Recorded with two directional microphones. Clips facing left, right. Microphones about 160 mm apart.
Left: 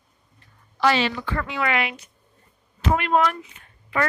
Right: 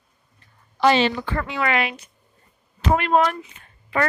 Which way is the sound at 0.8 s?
25° right (ahead or behind).